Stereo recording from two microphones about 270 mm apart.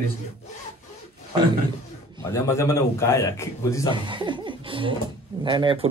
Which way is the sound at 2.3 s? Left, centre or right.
Centre.